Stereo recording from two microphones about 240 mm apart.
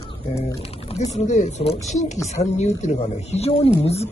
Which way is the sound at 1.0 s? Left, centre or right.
Left.